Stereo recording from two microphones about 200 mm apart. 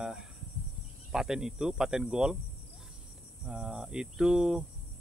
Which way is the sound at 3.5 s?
5° right (ahead or behind).